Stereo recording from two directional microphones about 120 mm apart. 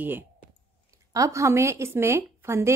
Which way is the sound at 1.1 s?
25° right (ahead or behind).